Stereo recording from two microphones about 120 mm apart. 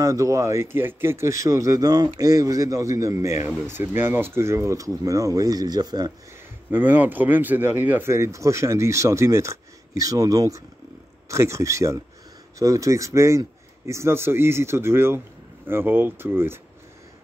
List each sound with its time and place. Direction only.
0.0 s a man's voice: 25° right (ahead or behind)
6.7 s a man's voice: 15° right (ahead or behind)